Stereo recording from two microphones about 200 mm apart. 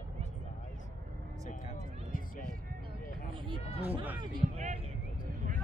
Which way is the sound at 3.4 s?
25° right (ahead or behind).